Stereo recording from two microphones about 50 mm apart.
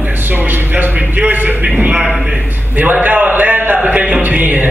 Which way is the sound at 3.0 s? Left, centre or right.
Right.